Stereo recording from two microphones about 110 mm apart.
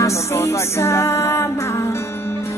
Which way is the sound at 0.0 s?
25° left (ahead or behind).